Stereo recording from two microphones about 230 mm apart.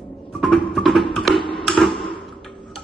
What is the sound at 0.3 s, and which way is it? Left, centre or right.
Music, centre.